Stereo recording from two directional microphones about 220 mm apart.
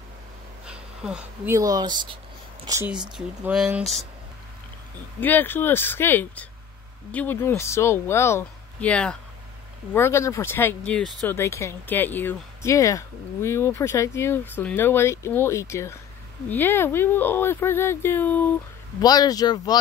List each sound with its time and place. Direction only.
0.7 s speech: 5° right (ahead or behind)
3.2 s speech: 5° right (ahead or behind)
5.2 s speech: 10° left (ahead or behind)